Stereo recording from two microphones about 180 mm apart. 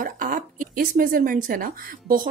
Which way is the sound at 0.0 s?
50° right (ahead or behind).